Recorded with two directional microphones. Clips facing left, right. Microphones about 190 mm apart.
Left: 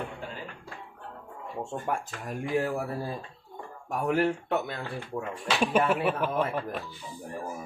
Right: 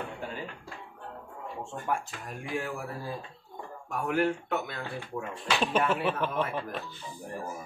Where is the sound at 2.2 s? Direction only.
40° left (ahead or behind).